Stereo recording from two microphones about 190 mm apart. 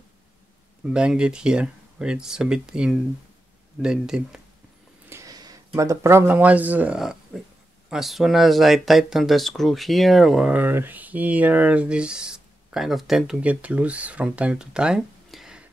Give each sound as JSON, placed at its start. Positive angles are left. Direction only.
{"t": 0.8, "sound": "speech", "side_deg": -5}
{"t": 5.1, "sound": "a sound", "side_deg": -20}
{"t": 5.7, "sound": "speech", "side_deg": -15}